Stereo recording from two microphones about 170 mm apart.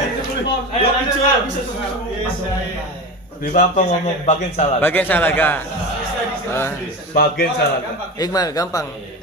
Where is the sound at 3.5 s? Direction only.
45° left (ahead or behind).